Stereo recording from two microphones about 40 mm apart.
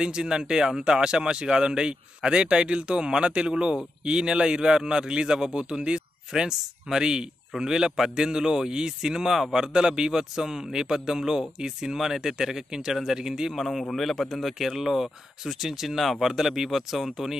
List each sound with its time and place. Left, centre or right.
0.0 s a man's voice: centre
13.6 s speech: centre